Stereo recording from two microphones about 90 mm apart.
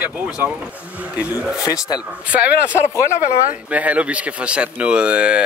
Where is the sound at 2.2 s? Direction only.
15° right (ahead or behind).